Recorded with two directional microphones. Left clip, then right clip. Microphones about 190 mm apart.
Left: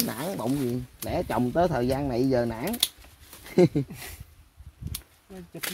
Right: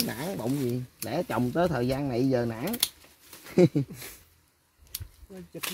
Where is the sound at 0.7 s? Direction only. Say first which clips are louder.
Left 2 dB; 15° right (ahead or behind).